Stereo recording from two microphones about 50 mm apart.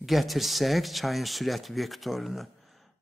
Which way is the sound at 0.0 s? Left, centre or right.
Centre.